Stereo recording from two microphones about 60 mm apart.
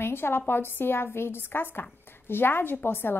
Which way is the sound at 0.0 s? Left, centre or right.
Left.